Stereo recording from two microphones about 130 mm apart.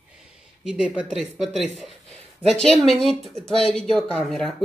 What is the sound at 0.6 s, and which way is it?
A woman's voice, 10° right (ahead or behind).